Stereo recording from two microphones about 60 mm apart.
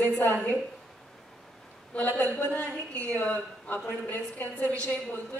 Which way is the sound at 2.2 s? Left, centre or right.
Left.